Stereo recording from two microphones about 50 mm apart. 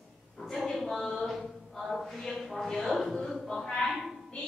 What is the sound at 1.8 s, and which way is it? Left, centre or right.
Chant, centre.